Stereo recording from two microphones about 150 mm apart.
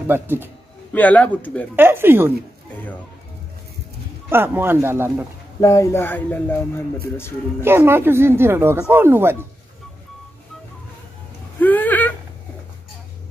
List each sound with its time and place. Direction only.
0.1 s speech: 15° right (ahead or behind)
0.9 s speech: 10° left (ahead or behind)
1.8 s speech: 15° right (ahead or behind)
2.7 s speech: 10° left (ahead or behind)
4.3 s speech: 15° right (ahead or behind)
5.6 s speech: 20° left (ahead or behind)
7.6 s speech: 15° right (ahead or behind)
11.6 s a sound: 10° left (ahead or behind)